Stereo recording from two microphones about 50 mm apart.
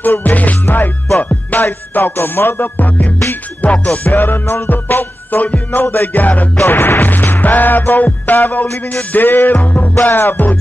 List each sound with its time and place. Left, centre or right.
0.0 s music: left
3.6 s music: left
6.6 s music: left